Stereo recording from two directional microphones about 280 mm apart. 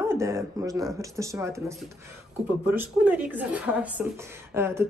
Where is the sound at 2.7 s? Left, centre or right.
Centre.